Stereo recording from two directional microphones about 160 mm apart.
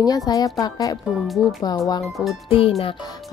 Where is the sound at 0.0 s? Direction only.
25° left (ahead or behind).